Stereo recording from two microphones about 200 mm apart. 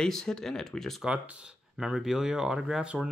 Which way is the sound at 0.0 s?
5° left (ahead or behind).